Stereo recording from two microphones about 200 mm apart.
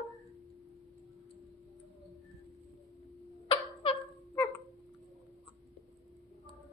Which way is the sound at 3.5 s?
25° left (ahead or behind).